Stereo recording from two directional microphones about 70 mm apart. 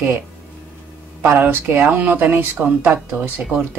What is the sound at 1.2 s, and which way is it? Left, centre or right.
Speech, right.